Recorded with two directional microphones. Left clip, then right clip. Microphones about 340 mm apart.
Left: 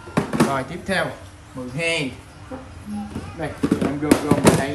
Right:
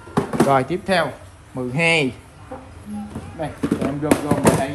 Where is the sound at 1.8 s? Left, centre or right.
Centre.